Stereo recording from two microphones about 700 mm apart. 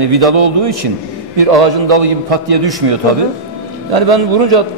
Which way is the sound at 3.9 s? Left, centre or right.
Right.